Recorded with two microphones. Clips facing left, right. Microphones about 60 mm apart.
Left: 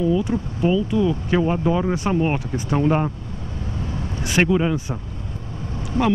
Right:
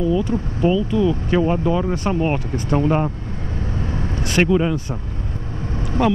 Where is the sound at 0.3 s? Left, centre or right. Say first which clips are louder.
Right 2 dB; centre.